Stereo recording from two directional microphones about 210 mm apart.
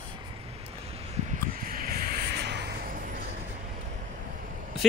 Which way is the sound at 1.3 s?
40° right (ahead or behind).